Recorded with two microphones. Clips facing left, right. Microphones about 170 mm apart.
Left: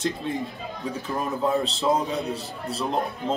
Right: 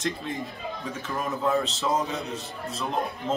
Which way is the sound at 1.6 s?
30° left (ahead or behind).